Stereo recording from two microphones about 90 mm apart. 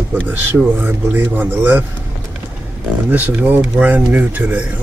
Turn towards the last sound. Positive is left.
turn(degrees=-15)  # may be behind; listen again after turning